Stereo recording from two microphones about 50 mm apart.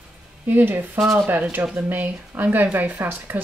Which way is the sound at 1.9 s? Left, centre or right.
Right.